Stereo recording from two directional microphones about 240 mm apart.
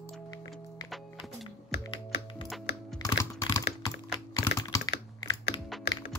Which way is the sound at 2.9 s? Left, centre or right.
Centre.